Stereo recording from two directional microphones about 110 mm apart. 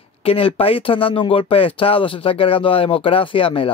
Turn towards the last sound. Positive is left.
turn(degrees=55)  # may be behind; listen again after turning